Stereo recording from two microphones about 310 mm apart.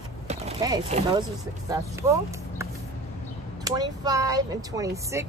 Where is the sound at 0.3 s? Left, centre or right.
Centre.